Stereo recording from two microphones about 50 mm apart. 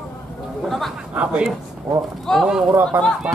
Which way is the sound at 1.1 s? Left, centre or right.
Right.